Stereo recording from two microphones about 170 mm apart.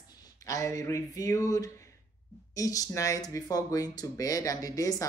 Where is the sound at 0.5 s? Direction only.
20° left (ahead or behind).